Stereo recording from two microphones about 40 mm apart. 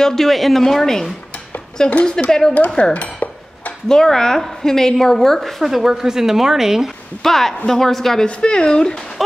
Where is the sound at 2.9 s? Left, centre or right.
Left.